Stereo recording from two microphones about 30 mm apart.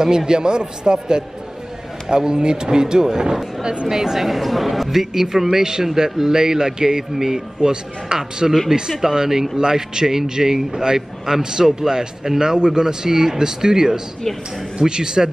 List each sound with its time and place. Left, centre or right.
0.0 s a man's voice: right
4.3 s a man's voice: centre
7.6 s a man's voice: right
11.0 s a man's voice: centre